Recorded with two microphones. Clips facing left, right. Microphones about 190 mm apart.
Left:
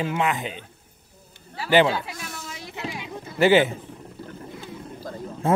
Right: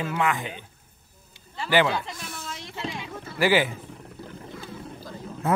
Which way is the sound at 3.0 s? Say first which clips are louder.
Left 5 dB; 20° left (ahead or behind).